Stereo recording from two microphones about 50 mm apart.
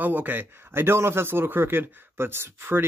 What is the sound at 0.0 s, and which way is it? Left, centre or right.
Speech, right.